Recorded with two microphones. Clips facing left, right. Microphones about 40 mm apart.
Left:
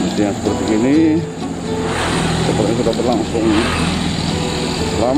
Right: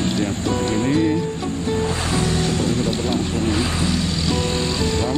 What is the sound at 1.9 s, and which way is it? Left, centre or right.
Vehicle, left.